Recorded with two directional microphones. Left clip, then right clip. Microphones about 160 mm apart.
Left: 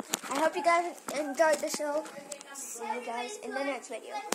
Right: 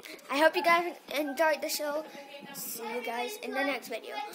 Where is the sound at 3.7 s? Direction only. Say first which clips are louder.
Right 2 dB; 10° right (ahead or behind).